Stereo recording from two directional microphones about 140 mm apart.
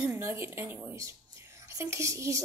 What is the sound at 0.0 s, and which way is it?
Speech, 15° right (ahead or behind).